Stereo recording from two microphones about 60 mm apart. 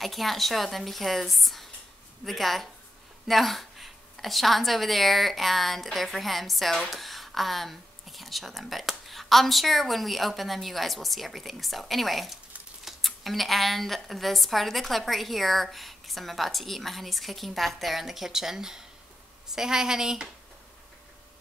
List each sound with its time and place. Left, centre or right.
0.0 s a woman's voice: centre